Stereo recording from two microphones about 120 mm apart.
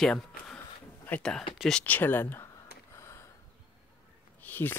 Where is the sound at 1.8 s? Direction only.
15° left (ahead or behind).